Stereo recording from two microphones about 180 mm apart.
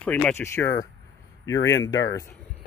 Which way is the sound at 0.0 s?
5° left (ahead or behind).